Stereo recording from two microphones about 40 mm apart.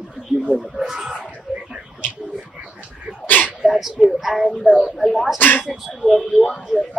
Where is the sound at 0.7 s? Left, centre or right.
Centre.